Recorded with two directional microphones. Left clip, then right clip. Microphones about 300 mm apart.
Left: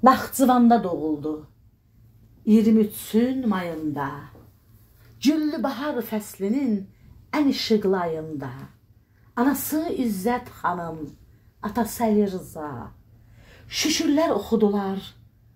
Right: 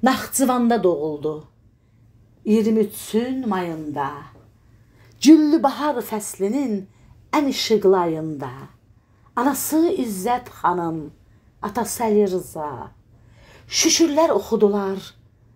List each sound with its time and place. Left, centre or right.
0.0 s speech: right
0.7 s a woman's voice: right
2.4 s a woman's voice: right
5.2 s a woman's voice: right